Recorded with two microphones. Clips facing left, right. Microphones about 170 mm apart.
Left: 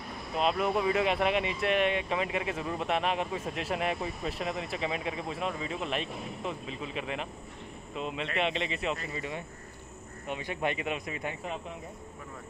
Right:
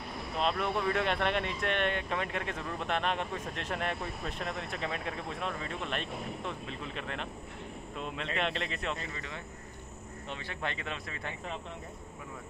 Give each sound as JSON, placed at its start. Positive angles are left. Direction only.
{"t": 0.4, "sound": "speech", "side_deg": 5}
{"t": 8.4, "sound": "speech", "side_deg": 0}
{"t": 9.1, "sound": "speech", "side_deg": 15}